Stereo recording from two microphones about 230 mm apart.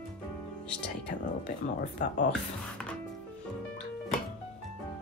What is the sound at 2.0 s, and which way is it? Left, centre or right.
Speech, left.